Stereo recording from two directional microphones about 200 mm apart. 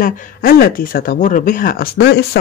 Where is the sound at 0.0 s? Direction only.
45° left (ahead or behind).